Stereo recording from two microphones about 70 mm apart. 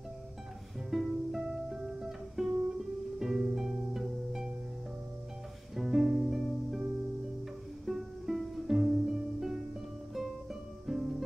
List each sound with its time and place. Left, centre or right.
0.8 s music: centre
5.8 s music: centre
7.8 s music: centre